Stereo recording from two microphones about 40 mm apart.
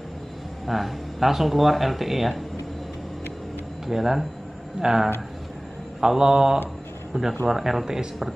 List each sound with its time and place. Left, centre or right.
0.7 s speech: centre
3.8 s speech: centre